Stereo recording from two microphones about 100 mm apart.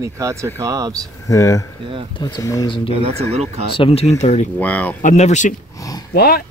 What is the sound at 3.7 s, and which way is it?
Speech, 75° left (ahead or behind).